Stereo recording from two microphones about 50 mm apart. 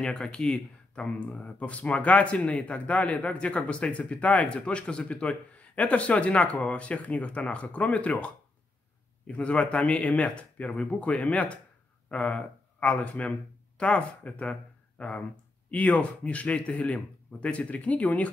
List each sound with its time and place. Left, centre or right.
0.0 s speech: centre
9.3 s speech: left